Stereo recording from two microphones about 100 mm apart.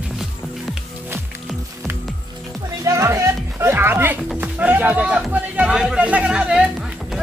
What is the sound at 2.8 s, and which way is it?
Music, 30° right (ahead or behind).